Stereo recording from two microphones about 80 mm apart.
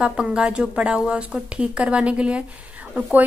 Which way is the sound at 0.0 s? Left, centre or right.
Centre.